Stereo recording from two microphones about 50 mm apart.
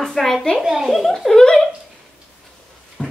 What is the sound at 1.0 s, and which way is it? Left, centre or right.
Speech, centre.